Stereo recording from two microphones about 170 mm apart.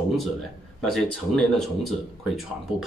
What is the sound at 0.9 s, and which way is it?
Speech, 5° left (ahead or behind).